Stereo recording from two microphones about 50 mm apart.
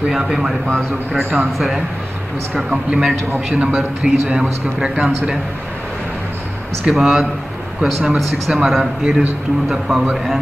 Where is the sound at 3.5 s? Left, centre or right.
Right.